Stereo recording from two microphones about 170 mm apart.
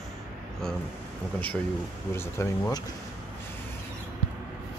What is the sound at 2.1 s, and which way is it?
Speech, 15° left (ahead or behind).